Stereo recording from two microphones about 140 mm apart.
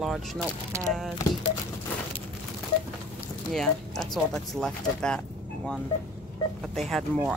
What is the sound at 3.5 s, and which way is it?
Speech, centre (ahead or behind).